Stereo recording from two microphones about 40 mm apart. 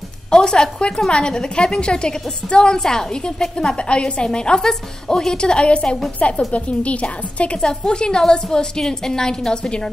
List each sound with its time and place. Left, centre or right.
0.3 s a woman's voice: centre
7.6 s a woman's voice: left